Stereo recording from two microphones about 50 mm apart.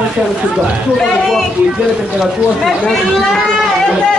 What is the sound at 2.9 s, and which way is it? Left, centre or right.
Speech, centre.